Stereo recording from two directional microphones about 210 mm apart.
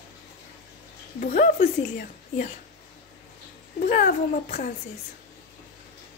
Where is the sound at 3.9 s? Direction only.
40° left (ahead or behind).